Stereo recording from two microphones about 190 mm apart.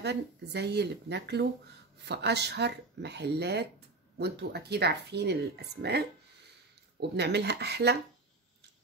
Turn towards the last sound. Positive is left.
turn(degrees=-60)  # may be behind; listen again after turning